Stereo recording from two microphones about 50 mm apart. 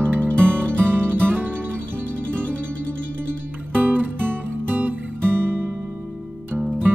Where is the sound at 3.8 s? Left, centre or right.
Right.